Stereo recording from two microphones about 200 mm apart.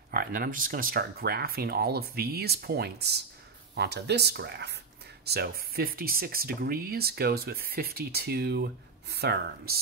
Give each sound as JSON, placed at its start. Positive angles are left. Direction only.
{"t": 0.1, "sound": "speech", "side_deg": -45}